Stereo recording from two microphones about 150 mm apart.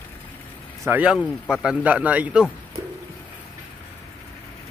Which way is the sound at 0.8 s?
10° right (ahead or behind).